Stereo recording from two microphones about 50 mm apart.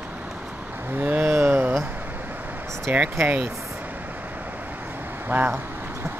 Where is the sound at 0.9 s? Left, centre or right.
Right.